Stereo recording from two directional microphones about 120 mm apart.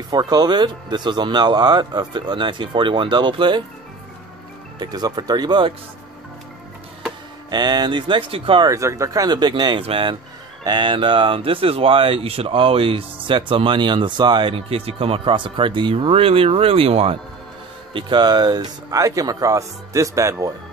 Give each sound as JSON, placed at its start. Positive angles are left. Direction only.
{"t": 0.1, "sound": "speech", "side_deg": -35}
{"t": 4.7, "sound": "speech", "side_deg": -35}
{"t": 7.5, "sound": "speech", "side_deg": -35}
{"t": 8.6, "sound": "speech", "side_deg": -25}
{"t": 9.8, "sound": "speech", "side_deg": -50}
{"t": 10.6, "sound": "speech", "side_deg": -40}
{"t": 17.9, "sound": "speech", "side_deg": -40}